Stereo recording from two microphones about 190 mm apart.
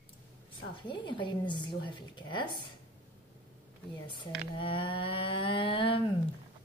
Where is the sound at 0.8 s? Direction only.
25° left (ahead or behind).